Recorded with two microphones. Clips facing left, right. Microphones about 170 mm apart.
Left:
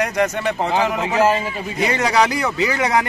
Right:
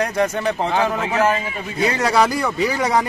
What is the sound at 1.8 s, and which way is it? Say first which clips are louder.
A man's voice: even; 5° left (ahead or behind).